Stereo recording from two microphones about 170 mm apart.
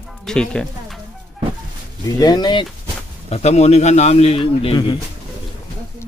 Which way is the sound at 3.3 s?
40° left (ahead or behind).